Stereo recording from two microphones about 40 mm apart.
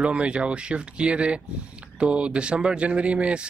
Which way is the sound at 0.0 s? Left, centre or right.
Right.